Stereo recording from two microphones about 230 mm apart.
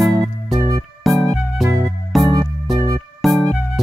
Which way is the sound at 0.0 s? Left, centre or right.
Centre.